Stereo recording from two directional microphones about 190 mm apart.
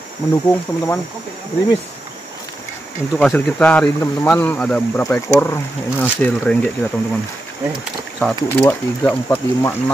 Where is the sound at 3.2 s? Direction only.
10° left (ahead or behind).